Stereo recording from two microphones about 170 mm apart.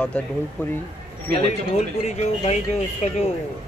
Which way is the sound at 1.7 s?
40° left (ahead or behind).